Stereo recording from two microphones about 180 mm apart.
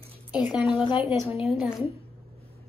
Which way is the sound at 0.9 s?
5° right (ahead or behind).